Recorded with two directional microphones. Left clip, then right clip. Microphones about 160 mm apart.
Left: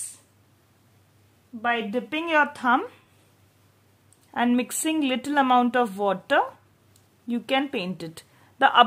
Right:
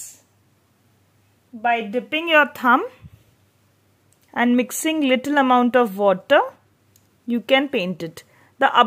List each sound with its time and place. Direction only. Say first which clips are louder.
1.6 s speech: right 5 dB; 20° right (ahead or behind); by 3.0 s 35° right (ahead or behind)
4.3 s speech: right 5 dB; 35° right (ahead or behind)
8.4 s a sound: right 2 dB; 25° right (ahead or behind)